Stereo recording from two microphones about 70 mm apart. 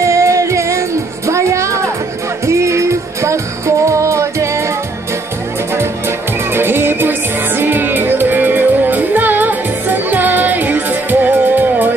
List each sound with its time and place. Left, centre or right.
0.0 s music: right
5.8 s music: right